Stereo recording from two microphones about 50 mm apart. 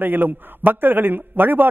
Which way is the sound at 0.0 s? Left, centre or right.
Right.